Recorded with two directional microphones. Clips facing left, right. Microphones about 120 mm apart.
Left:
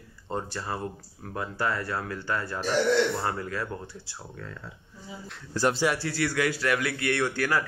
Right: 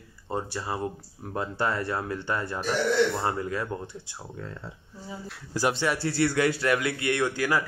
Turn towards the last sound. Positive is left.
turn(degrees=-15)  # may be behind; listen again after turning